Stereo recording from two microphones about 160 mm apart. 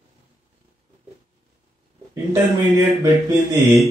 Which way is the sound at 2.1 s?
20° right (ahead or behind).